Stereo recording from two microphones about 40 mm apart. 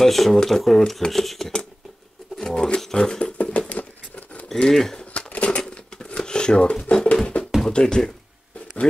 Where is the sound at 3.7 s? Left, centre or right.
Left.